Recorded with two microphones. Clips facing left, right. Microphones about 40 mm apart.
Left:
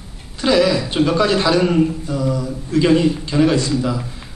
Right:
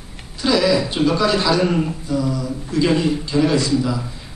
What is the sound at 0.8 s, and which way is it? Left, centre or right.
A man's voice, left.